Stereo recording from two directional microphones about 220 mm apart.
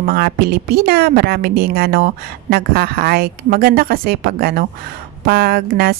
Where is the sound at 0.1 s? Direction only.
45° right (ahead or behind).